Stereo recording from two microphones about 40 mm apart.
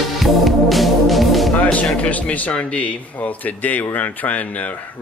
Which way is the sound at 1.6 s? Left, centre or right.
Left.